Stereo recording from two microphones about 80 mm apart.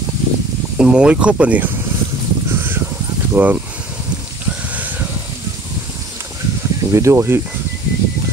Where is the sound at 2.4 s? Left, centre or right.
Right.